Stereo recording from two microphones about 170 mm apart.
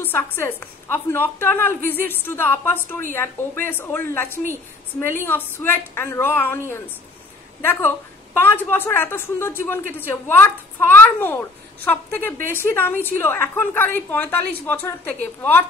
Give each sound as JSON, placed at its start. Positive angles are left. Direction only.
{"t": 0.0, "sound": "a woman's voice", "side_deg": 15}